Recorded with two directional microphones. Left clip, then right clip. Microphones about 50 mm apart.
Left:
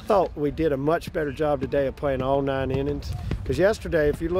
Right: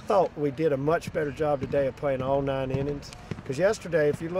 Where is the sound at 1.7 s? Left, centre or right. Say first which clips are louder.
Left 2 dB; right.